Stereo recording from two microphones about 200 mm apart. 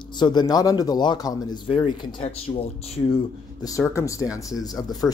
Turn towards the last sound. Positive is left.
turn(degrees=20)  # may be behind; listen again after turning